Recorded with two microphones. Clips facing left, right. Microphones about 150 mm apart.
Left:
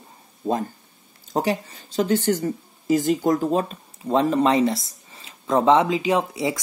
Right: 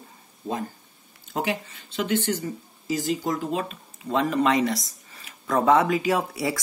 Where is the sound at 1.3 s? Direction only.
35° left (ahead or behind).